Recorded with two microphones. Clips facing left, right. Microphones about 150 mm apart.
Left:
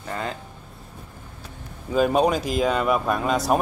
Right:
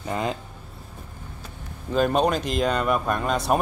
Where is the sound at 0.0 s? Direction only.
20° right (ahead or behind).